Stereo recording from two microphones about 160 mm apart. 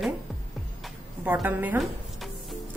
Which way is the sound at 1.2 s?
10° right (ahead or behind).